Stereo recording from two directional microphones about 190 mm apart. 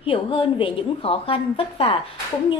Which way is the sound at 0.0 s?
30° left (ahead or behind).